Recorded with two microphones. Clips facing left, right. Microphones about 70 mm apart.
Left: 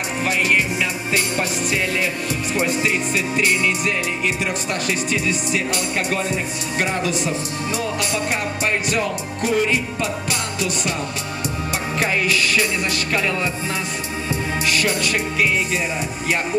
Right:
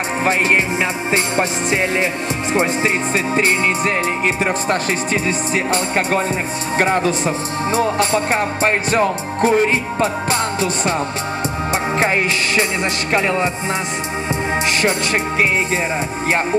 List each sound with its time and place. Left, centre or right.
0.2 s music: right
3.3 s speech: right
12.0 s music: right
14.7 s music: right